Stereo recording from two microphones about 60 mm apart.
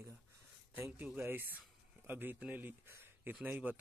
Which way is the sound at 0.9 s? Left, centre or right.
Right.